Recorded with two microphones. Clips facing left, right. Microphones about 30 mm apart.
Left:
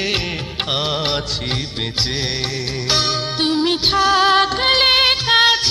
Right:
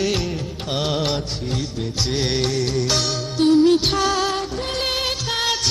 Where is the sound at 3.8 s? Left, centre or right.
Left.